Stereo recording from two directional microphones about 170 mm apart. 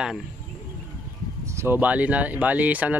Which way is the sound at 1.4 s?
15° right (ahead or behind).